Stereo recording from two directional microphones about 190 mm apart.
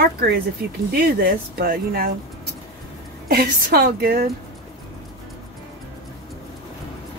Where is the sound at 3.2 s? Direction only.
55° right (ahead or behind).